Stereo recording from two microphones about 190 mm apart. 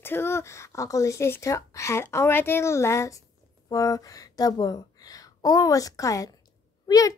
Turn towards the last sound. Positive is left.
turn(degrees=20)  # may be behind; listen again after turning